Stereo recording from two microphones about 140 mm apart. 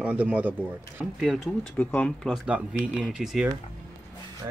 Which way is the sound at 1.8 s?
10° left (ahead or behind).